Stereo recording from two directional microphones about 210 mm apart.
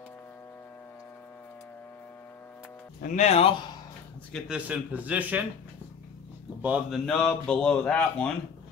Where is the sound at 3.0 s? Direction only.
35° left (ahead or behind).